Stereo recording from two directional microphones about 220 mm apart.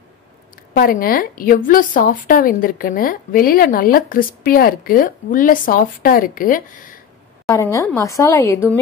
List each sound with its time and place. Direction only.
0.7 s a woman's voice: 40° left (ahead or behind)
7.4 s a woman's voice: 15° left (ahead or behind)